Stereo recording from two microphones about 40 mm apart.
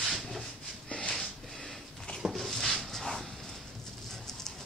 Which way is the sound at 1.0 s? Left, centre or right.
Centre.